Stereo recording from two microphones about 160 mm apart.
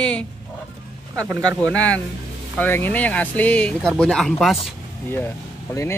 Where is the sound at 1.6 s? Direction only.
10° left (ahead or behind).